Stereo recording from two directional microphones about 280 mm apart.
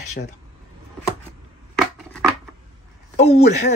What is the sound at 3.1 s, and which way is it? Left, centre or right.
Speech, left.